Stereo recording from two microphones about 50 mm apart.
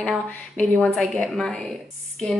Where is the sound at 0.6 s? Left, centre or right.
Centre.